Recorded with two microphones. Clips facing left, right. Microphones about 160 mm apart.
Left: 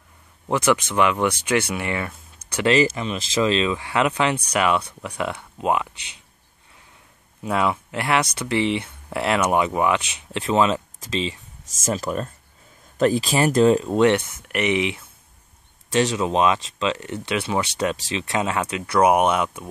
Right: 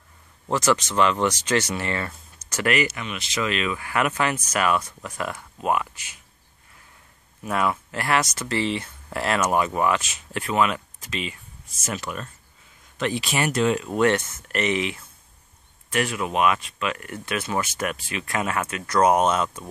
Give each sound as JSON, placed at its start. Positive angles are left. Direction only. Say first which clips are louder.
{"t": 0.9, "sound": "speech", "louder": "left 1 dB", "side_deg": 10}
{"t": 2.5, "sound": "speech", "louder": "left 5 dB", "side_deg": 25}
{"t": 7.4, "sound": "speech", "louder": "left 2 dB", "side_deg": 15}
{"t": 11.6, "sound": "speech", "louder": "left 7 dB", "side_deg": 90}
{"t": 11.9, "sound": "speech", "louder": "left 7 dB", "side_deg": 35}
{"t": 13.9, "sound": "speech", "louder": "left 3 dB", "side_deg": 15}